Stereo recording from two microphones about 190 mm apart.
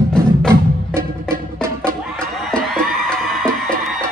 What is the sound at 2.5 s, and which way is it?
Music, centre (ahead or behind).